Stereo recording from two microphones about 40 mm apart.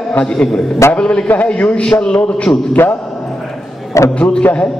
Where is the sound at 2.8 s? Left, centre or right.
Left.